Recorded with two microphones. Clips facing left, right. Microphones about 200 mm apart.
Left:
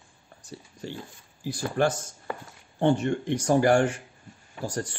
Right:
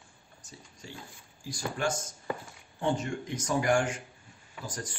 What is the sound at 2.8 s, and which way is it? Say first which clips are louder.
Speech: left 7 dB; 65° left (ahead or behind).